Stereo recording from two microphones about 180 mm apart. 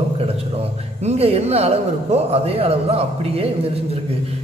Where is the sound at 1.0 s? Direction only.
35° right (ahead or behind).